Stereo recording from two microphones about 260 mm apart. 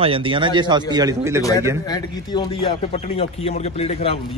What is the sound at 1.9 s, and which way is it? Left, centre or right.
A man's voice, centre.